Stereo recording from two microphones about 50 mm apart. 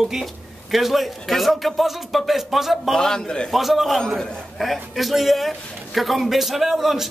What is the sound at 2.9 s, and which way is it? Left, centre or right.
Speech, centre.